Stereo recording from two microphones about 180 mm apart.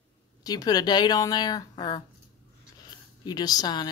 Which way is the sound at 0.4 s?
20° left (ahead or behind).